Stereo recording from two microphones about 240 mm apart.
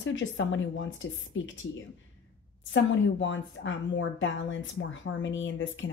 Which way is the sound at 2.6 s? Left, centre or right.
Left.